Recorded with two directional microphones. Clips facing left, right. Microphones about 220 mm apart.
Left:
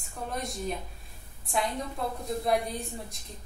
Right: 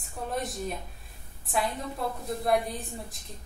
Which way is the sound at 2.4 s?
Centre (ahead or behind).